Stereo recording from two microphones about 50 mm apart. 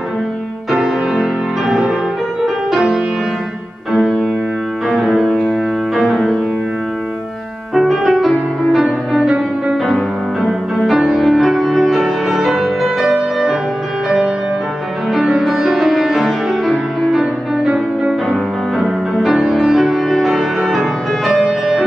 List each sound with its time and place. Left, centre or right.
0.7 s music: centre
4.8 s music: centre
7.7 s music: centre
10.4 s music: centre